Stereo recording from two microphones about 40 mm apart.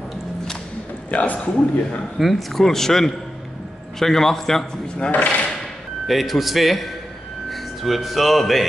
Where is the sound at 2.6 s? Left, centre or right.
Centre.